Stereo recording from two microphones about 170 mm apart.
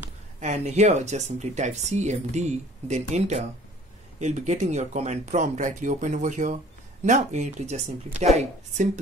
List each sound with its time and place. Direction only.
0.4 s speech: 45° right (ahead or behind)